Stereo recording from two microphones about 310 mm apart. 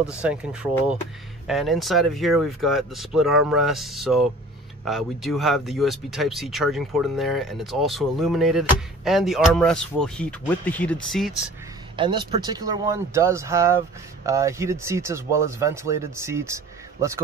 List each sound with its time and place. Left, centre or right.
0.0 s speech: centre
12.0 s speech: centre